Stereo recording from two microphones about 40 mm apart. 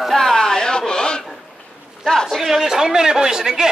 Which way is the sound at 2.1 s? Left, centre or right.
Centre.